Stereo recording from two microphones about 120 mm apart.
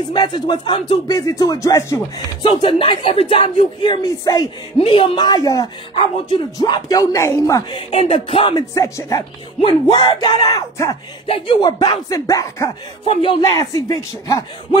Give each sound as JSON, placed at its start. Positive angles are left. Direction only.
{"t": 0.1, "sound": "speech", "side_deg": 35}
{"t": 1.0, "sound": "speech", "side_deg": 30}
{"t": 2.1, "sound": "speech", "side_deg": 45}
{"t": 4.7, "sound": "speech", "side_deg": 45}
{"t": 5.9, "sound": "speech", "side_deg": 45}
{"t": 6.6, "sound": "speech", "side_deg": 30}
{"t": 7.7, "sound": "speech", "side_deg": 55}
{"t": 8.7, "sound": "speech", "side_deg": 25}
{"t": 9.6, "sound": "speech", "side_deg": 45}
{"t": 11.2, "sound": "speech", "side_deg": 50}
{"t": 11.6, "sound": "speech", "side_deg": 35}
{"t": 13.0, "sound": "speech", "side_deg": 45}
{"t": 13.4, "sound": "speech", "side_deg": 30}